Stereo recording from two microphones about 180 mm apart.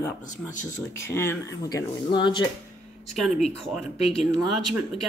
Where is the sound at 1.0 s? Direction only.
15° left (ahead or behind).